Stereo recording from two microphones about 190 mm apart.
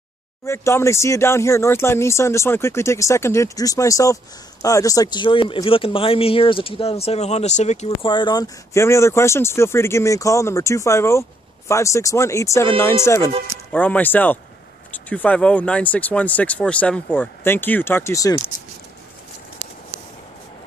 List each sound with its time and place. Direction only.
0.5 s speech: 15° left (ahead or behind)